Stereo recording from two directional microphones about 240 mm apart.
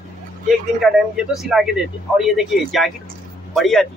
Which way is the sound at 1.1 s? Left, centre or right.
Centre.